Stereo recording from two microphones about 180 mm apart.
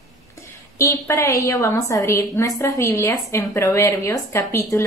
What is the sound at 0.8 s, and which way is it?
A woman's voice, 15° left (ahead or behind).